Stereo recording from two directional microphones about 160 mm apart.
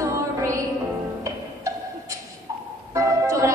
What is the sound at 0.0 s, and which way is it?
Music, 20° right (ahead or behind).